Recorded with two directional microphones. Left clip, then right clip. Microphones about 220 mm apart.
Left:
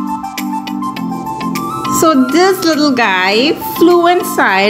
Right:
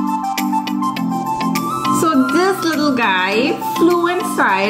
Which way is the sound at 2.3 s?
30° left (ahead or behind).